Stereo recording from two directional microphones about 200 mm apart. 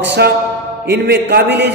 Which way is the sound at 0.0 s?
55° right (ahead or behind).